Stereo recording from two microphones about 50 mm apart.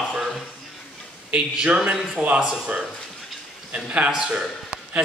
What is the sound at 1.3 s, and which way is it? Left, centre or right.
Speech, right.